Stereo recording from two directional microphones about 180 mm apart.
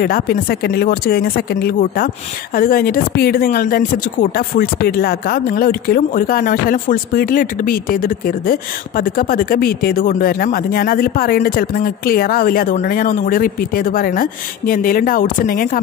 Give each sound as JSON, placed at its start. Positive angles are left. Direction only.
{"t": 0.0, "sound": "speech", "side_deg": 55}